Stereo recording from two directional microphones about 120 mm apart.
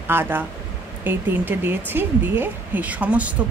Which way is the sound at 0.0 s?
15° right (ahead or behind).